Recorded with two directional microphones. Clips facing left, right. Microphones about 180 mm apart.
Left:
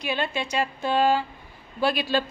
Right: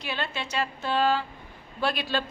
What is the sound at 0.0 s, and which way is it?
Speech, 15° left (ahead or behind).